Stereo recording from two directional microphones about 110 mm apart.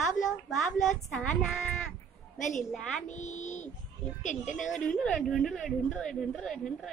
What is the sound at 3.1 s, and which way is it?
A child's voice, 90° left.